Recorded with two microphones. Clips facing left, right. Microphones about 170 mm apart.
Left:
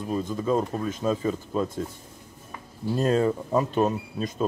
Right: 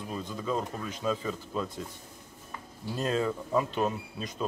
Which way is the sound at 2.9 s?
45° left (ahead or behind).